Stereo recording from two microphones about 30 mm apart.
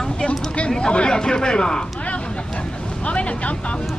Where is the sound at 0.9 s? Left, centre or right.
Left.